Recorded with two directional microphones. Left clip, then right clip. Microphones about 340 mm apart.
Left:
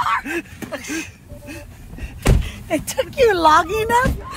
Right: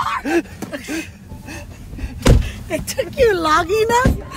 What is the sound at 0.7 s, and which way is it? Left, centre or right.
Speech, centre.